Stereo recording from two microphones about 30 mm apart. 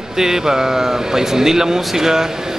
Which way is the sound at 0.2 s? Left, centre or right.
Centre.